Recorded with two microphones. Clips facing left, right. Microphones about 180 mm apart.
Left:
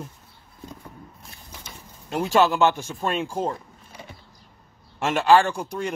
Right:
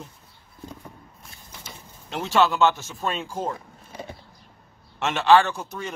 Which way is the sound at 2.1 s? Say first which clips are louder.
Left 2 dB; 15° left (ahead or behind).